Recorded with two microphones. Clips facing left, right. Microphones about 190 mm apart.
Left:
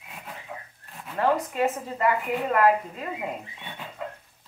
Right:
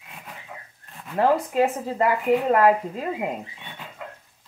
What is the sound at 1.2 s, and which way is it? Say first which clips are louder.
Speech: right 4 dB; 30° right (ahead or behind).